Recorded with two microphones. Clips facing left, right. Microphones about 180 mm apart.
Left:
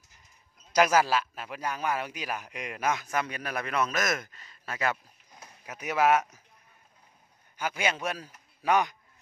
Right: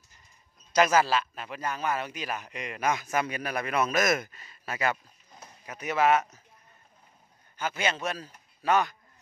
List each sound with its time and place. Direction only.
0.7 s a man's voice: 10° left (ahead or behind)
5.4 s speech: 10° left (ahead or behind)
7.5 s a man's voice: 10° left (ahead or behind)